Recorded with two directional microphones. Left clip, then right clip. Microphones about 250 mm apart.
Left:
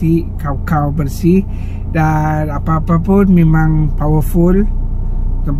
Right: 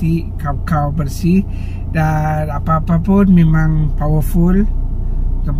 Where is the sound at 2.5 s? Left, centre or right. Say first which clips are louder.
Even; left.